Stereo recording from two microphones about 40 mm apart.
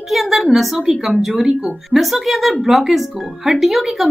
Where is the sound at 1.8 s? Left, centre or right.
Centre.